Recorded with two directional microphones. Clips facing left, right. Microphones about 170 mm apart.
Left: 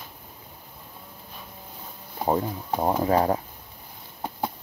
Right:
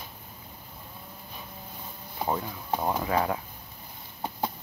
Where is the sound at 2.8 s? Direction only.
35° left (ahead or behind).